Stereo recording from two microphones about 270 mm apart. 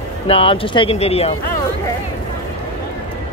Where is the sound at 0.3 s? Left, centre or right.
Centre.